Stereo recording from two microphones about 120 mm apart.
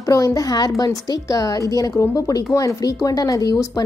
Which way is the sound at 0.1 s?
30° left (ahead or behind).